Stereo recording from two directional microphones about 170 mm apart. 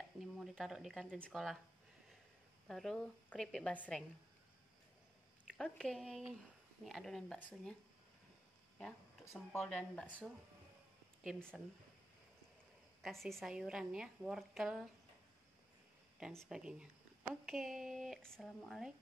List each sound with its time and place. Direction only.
0.2 s a woman's voice: centre (ahead or behind)
2.7 s a woman's voice: 5° left (ahead or behind)
5.5 s a woman's voice: 5° left (ahead or behind)
8.7 s a woman's voice: 5° left (ahead or behind)
11.2 s a woman's voice: centre (ahead or behind)
13.0 s a woman's voice: centre (ahead or behind)
16.2 s a woman's voice: centre (ahead or behind)